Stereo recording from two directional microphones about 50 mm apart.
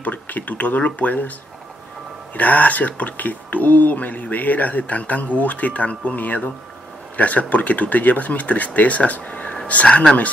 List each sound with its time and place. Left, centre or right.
0.0 s speech: left
2.3 s speech: left